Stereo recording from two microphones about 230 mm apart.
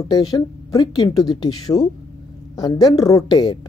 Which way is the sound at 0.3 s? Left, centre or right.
Centre.